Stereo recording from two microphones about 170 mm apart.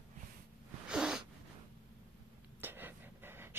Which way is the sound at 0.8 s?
5° right (ahead or behind).